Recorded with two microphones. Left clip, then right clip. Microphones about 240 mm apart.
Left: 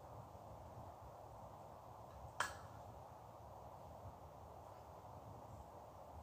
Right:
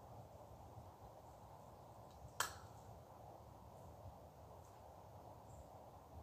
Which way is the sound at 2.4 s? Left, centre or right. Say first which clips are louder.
Left 1 dB; right.